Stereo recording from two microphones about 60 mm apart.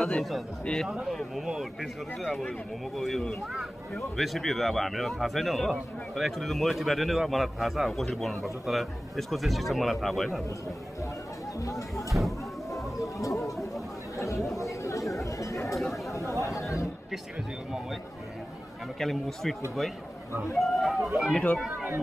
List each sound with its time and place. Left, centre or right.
0.0 s a man's voice: centre
0.8 s a man's voice: centre
12.1 s speech: right
12.9 s chatter: left
14.1 s speech: left
14.6 s chatter: left
15.7 s chatter: centre
16.1 s chatter: left
18.9 s a man's voice: centre
20.5 s a man's voice: centre
21.3 s speech: centre
21.6 s speech: right